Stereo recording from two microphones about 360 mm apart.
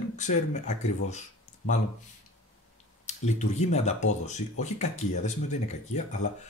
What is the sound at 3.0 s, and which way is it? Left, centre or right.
Speech, centre.